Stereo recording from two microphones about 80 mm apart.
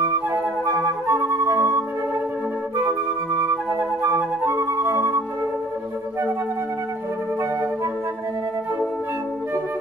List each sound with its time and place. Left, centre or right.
1.0 s music: right
4.0 s flute: right